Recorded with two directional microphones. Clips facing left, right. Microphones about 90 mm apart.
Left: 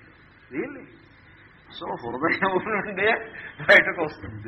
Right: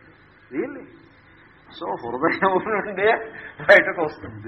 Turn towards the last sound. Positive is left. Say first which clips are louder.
# right 3 dB
turn(degrees=-20)  # may be behind; listen again after turning